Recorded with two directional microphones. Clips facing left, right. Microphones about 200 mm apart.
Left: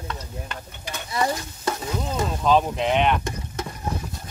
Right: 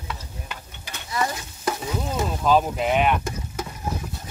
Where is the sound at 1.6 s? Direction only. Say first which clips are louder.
Right 2 dB; 5° right (ahead or behind).